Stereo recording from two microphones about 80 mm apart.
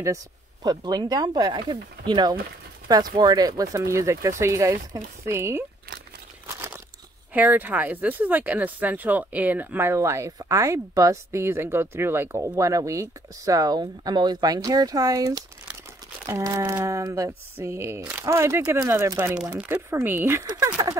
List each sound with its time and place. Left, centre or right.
0.7 s speech: right
2.9 s speech: right
7.3 s speech: right
9.9 s speech: right
19.5 s speech: centre
19.9 s speech: right
20.4 s speech: right